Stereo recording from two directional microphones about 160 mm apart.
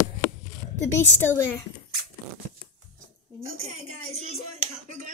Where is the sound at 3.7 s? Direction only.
40° right (ahead or behind).